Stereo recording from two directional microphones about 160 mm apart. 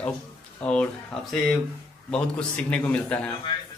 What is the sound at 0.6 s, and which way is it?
Speech, 5° left (ahead or behind).